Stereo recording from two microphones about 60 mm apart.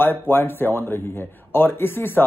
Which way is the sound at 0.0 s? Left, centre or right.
Left.